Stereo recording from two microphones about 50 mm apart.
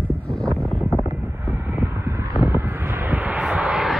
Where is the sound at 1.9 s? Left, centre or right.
Right.